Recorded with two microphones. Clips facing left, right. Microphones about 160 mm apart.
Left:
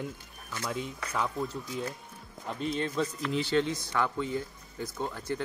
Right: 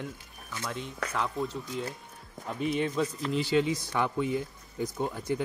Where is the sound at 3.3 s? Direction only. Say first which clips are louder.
Right 2 dB; centre (ahead or behind).